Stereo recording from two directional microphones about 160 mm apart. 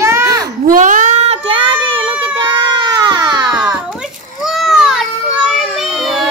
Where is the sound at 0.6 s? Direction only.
55° right (ahead or behind); by 2.1 s 35° right (ahead or behind).